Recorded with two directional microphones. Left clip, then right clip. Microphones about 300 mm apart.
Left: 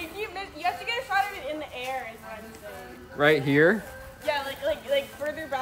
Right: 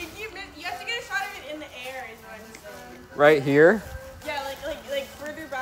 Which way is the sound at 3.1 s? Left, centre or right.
Centre.